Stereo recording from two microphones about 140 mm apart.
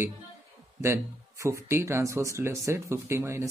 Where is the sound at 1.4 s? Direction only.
20° right (ahead or behind).